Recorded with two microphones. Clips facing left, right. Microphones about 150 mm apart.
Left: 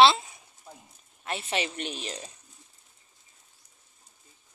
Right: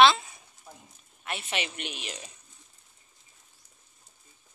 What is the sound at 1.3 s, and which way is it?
A woman's voice, 30° left (ahead or behind).